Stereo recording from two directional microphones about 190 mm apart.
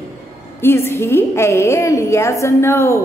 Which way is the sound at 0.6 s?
10° left (ahead or behind).